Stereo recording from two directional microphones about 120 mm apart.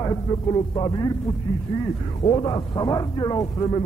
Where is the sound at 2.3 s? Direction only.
35° left (ahead or behind).